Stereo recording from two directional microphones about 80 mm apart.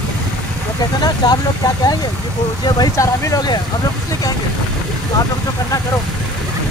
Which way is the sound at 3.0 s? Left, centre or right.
Left.